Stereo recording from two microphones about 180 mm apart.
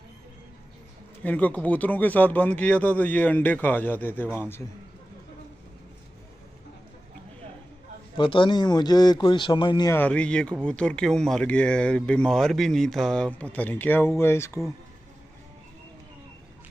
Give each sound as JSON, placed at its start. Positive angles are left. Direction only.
{"t": 1.2, "sound": "speech", "side_deg": 10}
{"t": 8.2, "sound": "a man's voice", "side_deg": 30}
{"t": 9.9, "sound": "speech", "side_deg": 5}